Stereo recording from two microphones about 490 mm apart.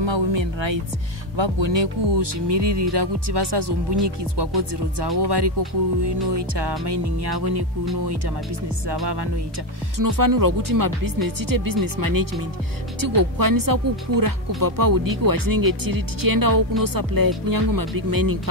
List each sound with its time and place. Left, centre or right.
0.0 s speech: right
8.8 s speech: right
9.9 s speech: right